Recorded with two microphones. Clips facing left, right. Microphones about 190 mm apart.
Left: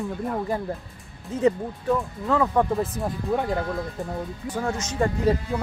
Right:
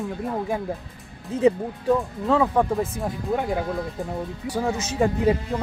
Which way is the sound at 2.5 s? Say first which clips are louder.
Right 1 dB; centre (ahead or behind).